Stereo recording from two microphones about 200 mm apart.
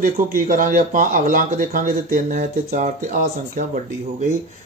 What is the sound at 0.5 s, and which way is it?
Speech, 40° right (ahead or behind).